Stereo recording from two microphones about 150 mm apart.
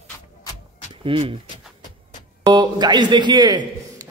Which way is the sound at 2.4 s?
30° right (ahead or behind).